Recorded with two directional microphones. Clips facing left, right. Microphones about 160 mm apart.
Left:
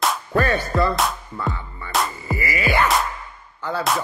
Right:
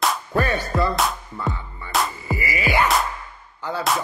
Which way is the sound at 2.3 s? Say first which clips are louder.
Left 1 dB; 20° right (ahead or behind).